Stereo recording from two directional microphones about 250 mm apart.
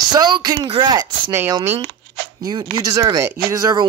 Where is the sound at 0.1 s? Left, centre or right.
Centre.